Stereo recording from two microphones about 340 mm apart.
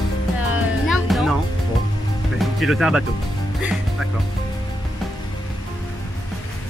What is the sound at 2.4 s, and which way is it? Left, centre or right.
Speech, centre.